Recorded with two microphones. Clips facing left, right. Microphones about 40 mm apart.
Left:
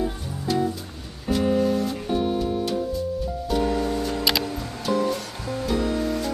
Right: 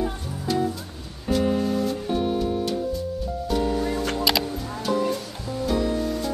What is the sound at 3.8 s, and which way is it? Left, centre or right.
Music, right.